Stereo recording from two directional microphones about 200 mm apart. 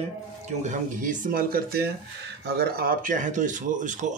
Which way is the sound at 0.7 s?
40° right (ahead or behind).